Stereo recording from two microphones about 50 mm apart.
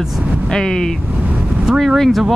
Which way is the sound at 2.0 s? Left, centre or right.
Centre.